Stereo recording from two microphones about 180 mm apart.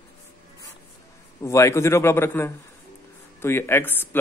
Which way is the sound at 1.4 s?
15° left (ahead or behind).